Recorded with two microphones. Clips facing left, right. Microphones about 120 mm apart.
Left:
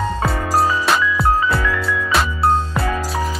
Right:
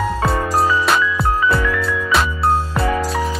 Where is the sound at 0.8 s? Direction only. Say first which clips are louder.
Left 1 dB; centre (ahead or behind).